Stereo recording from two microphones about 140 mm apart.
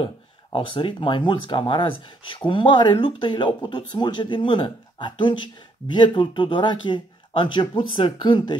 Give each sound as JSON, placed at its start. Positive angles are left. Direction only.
{"t": 0.0, "sound": "speech", "side_deg": 40}